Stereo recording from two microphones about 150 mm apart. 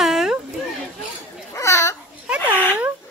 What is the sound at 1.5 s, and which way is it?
Babbling, 20° left (ahead or behind).